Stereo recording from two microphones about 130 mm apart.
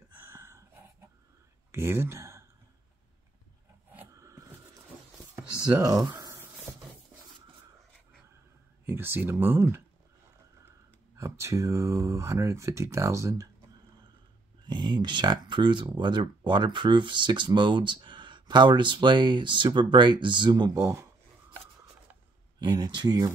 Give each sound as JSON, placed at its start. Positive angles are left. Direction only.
{"t": 0.1, "sound": "a sound", "side_deg": -20}
{"t": 1.7, "sound": "speech", "side_deg": -20}
{"t": 4.1, "sound": "a sound", "side_deg": -25}
{"t": 5.3, "sound": "speech", "side_deg": -25}
{"t": 6.1, "sound": "a sound", "side_deg": -25}
{"t": 8.8, "sound": "speech", "side_deg": -15}
{"t": 11.1, "sound": "speech", "side_deg": -20}
{"t": 14.7, "sound": "speech", "side_deg": -35}
{"t": 22.6, "sound": "speech", "side_deg": -30}